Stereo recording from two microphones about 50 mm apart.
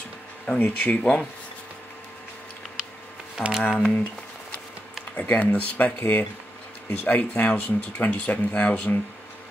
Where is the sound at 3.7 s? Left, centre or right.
Left.